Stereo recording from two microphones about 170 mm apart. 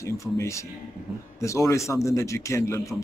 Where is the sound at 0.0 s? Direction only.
15° left (ahead or behind).